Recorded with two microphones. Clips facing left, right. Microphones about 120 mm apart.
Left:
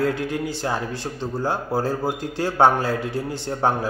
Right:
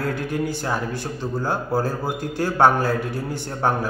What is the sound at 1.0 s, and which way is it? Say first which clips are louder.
A man's voice: even; 25° left (ahead or behind).